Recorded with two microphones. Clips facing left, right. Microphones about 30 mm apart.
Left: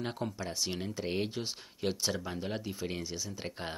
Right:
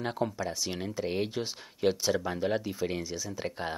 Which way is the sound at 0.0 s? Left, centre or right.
Centre.